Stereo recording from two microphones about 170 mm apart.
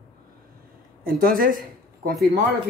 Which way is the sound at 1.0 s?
55° right (ahead or behind).